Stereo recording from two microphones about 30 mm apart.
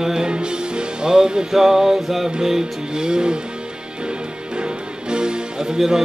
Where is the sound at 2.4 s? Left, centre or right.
Right.